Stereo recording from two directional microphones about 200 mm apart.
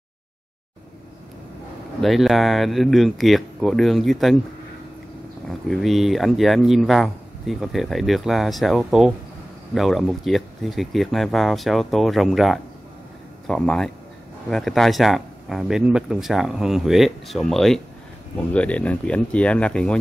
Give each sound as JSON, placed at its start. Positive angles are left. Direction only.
{"t": 2.0, "sound": "speech", "side_deg": 0}
{"t": 5.5, "sound": "speech", "side_deg": 0}